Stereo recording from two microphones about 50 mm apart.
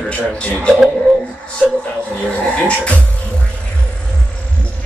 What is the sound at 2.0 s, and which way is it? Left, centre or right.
Speech, left.